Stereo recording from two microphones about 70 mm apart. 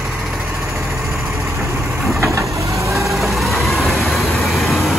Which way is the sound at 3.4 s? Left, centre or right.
Centre.